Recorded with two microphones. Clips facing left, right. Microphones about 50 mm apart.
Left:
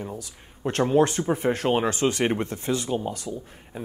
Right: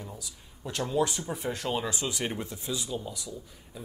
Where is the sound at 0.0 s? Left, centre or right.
Left.